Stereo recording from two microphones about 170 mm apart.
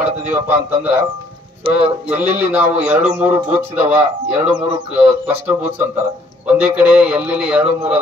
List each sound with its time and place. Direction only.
0.0 s a man's voice: 10° right (ahead or behind)
1.6 s speech: 35° right (ahead or behind)
2.1 s a man's voice: 10° right (ahead or behind)
6.4 s a man's voice: 10° right (ahead or behind)